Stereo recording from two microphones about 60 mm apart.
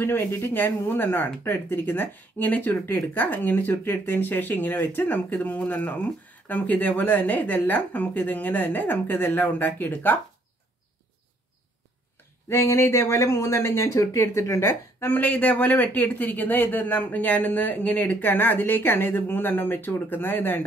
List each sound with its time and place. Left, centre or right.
0.0 s speech: left
12.4 s speech: left
15.0 s speech: left